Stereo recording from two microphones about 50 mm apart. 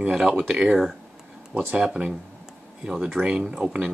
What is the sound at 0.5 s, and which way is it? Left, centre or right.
Speech, right.